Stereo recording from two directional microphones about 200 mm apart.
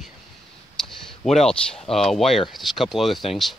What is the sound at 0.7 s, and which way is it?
Speech, centre (ahead or behind).